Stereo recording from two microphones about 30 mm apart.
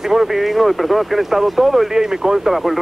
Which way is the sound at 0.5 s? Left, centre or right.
Centre.